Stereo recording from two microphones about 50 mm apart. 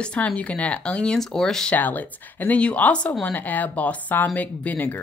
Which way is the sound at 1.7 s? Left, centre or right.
Left.